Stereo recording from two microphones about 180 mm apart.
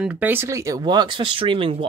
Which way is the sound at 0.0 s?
10° right (ahead or behind).